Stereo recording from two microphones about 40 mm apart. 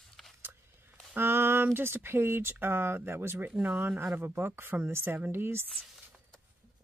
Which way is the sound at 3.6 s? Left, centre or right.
Right.